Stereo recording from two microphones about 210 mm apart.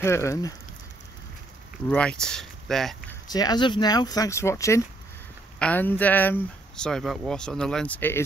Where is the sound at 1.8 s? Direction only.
5° left (ahead or behind).